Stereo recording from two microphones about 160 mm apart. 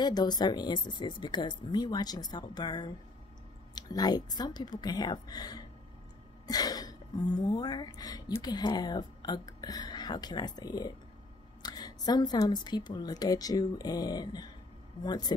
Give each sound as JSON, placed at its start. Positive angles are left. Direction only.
{"t": 0.0, "sound": "speech", "side_deg": 25}